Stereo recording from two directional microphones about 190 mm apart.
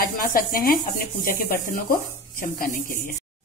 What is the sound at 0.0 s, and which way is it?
A woman's voice, 50° left (ahead or behind).